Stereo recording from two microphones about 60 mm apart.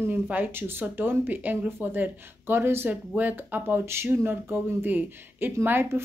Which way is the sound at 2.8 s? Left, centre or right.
Right.